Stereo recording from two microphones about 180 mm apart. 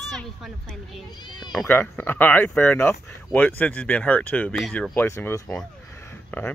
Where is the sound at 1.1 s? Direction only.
25° left (ahead or behind).